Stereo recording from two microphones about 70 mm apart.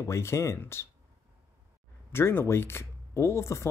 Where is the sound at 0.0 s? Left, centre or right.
Left.